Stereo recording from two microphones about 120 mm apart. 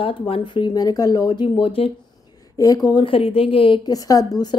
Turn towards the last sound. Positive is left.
turn(degrees=30)  # may be behind; listen again after turning